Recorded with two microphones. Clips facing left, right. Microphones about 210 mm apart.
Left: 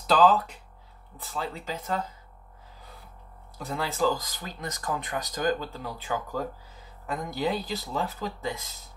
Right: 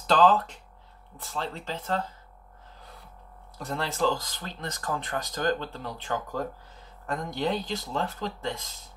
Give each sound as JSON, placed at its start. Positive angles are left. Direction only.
{"t": 0.0, "sound": "speech", "side_deg": 5}
{"t": 3.5, "sound": "speech", "side_deg": 0}